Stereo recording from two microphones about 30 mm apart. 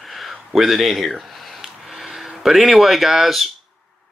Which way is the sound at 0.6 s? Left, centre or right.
Centre.